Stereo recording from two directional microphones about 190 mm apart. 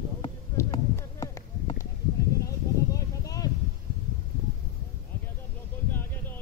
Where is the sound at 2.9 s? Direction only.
20° left (ahead or behind).